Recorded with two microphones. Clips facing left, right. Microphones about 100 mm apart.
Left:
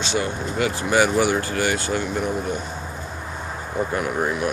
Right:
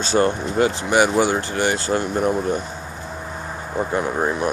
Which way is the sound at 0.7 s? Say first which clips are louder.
Left 1 dB; 25° right (ahead or behind).